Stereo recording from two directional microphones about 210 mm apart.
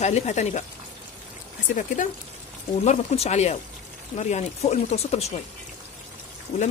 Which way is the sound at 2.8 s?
30° left (ahead or behind).